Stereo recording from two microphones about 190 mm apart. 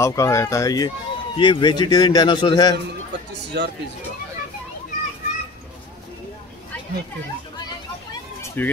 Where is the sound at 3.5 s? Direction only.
60° right (ahead or behind).